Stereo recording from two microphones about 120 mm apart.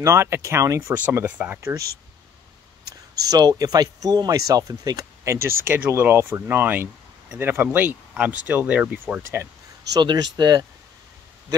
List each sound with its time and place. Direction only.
0.0 s speech: 20° right (ahead or behind)
0.9 s speech: 15° right (ahead or behind)
3.2 s speech: 30° right (ahead or behind)
9.9 s speech: 35° right (ahead or behind)